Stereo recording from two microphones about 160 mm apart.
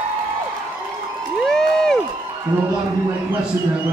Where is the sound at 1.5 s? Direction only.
5° left (ahead or behind).